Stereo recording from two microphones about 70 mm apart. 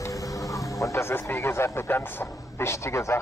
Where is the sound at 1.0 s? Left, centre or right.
Left.